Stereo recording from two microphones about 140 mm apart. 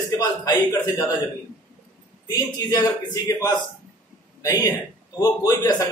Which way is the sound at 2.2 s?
30° left (ahead or behind).